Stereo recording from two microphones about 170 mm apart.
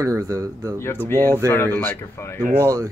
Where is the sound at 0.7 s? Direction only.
15° left (ahead or behind).